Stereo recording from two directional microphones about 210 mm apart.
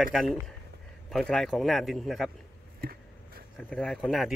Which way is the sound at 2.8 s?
45° right (ahead or behind).